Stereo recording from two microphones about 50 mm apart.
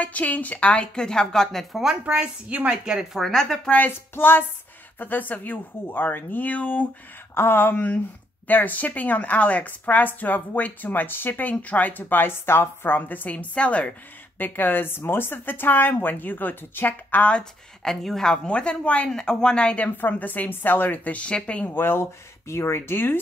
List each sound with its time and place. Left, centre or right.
0.0 s a woman's voice: left; by 1.8 s centre
2.0 s a woman's voice: right
2.8 s speech: centre
3.9 s a woman's voice: left
7.3 s a woman's voice: left
14.4 s a woman's voice: left
17.8 s a woman's voice: centre
20.0 s a woman's voice: left
21.7 s speech: left
22.5 s speech: left